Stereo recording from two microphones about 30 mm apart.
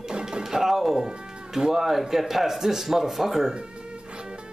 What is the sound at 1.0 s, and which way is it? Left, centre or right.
Cat, right.